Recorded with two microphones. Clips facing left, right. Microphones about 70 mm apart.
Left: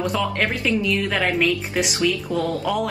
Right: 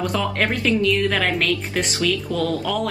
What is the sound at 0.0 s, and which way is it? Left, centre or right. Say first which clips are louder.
Speech: even; centre.